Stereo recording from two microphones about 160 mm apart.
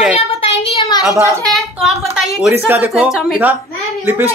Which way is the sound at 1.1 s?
20° right (ahead or behind).